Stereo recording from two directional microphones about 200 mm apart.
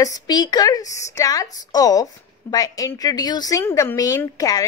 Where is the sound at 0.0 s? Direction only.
20° left (ahead or behind).